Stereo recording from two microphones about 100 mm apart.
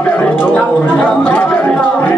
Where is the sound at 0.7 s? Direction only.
20° left (ahead or behind).